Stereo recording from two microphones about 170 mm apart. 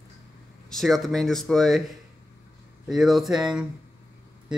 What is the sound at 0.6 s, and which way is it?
Speech, centre (ahead or behind).